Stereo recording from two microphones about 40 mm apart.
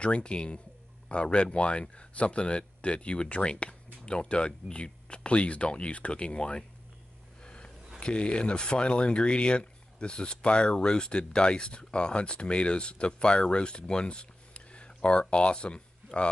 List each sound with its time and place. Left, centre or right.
0.0 s speech: left
7.4 s a sound: left
8.0 s speech: left